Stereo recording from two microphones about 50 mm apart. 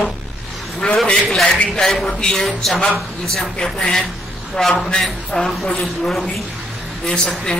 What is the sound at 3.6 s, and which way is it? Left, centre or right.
A man's voice, centre.